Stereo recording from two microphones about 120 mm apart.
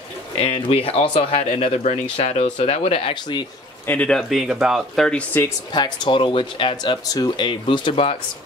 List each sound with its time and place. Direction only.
0.4 s speech: 50° left (ahead or behind)
1.8 s speech: 70° left (ahead or behind); by 3.4 s 45° left (ahead or behind)
3.8 s speech: 15° left (ahead or behind)
4.1 s speech: centre (ahead or behind)
5.7 s speech: 40° left (ahead or behind)